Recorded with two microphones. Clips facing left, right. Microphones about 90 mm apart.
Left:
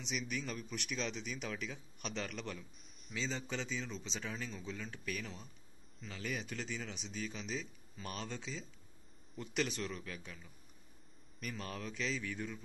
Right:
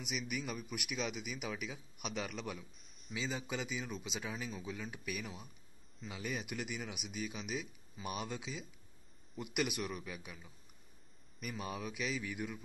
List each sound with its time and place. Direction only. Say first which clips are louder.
0.0 s a man's voice: even; 10° right (ahead or behind)